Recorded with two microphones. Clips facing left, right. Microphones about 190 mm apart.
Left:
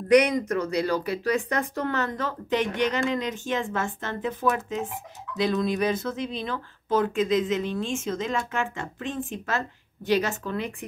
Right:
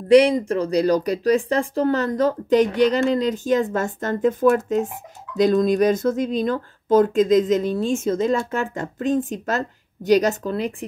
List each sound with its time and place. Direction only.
0.1 s speech: 30° right (ahead or behind)